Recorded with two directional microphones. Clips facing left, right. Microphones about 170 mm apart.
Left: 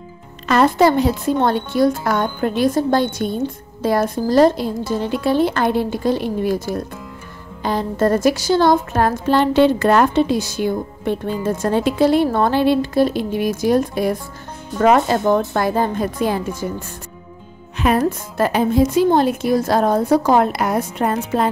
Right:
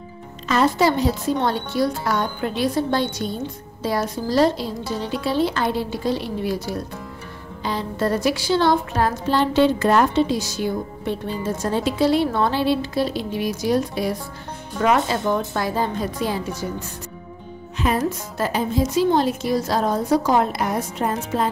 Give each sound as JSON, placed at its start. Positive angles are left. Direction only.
{"t": 0.5, "sound": "speech", "side_deg": 55}
{"t": 17.7, "sound": "a woman's voice", "side_deg": 60}